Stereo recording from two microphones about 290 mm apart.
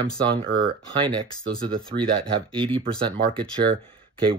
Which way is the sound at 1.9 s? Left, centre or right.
Right.